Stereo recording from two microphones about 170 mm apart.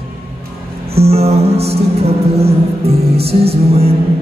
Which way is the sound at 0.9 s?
35° right (ahead or behind).